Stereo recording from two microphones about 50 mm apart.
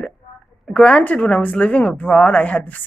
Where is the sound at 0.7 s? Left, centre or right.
Left.